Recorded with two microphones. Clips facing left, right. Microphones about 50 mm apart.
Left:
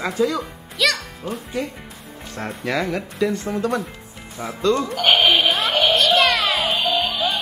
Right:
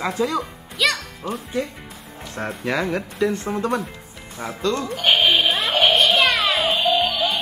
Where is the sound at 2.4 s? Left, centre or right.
Right.